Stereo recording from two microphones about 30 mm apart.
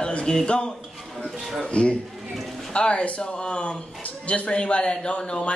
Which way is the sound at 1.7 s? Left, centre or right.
Left.